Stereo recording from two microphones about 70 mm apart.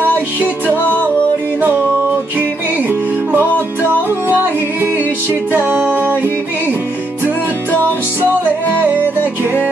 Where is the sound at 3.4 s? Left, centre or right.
Left.